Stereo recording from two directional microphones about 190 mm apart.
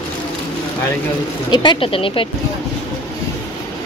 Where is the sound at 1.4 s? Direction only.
25° left (ahead or behind).